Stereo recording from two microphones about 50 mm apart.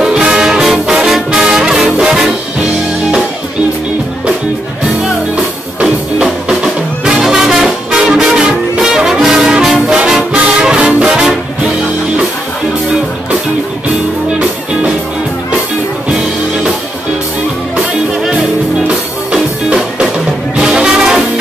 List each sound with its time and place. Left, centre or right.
0.0 s brass instrument: centre
0.8 s music: centre
1.3 s brass instrument: centre
5.3 s music: right
8.7 s brass instrument: centre
10.3 s music: centre
19.3 s music: centre